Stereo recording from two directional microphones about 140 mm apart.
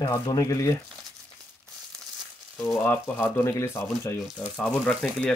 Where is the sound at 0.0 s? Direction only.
25° left (ahead or behind).